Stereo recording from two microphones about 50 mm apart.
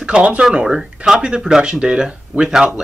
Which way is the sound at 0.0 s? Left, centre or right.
Right.